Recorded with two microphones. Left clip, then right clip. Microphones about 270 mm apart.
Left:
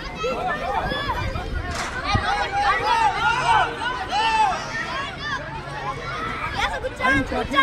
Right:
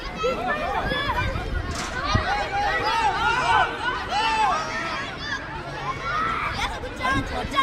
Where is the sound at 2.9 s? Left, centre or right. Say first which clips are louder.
Left 2 dB; left.